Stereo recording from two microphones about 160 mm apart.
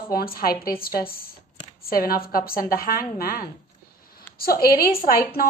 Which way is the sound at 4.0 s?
65° left (ahead or behind).